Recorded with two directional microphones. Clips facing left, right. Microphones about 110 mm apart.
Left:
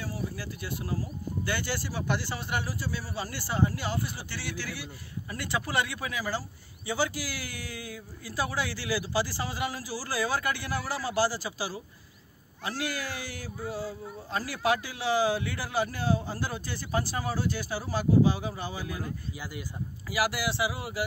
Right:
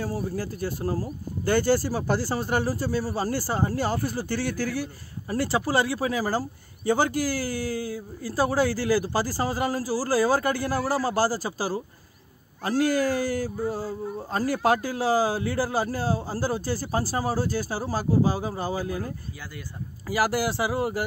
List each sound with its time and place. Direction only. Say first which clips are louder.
0.0 s speech: right 7 dB; 40° right (ahead or behind)